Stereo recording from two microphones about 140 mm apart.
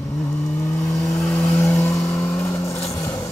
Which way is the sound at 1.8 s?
20° left (ahead or behind).